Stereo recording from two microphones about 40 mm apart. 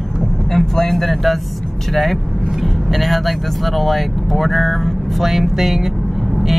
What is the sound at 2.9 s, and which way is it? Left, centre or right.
Speech, centre.